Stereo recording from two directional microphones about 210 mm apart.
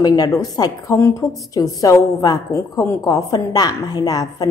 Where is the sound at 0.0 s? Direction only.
20° left (ahead or behind).